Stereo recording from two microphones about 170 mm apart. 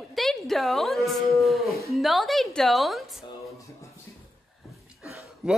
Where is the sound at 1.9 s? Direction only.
Centre (ahead or behind).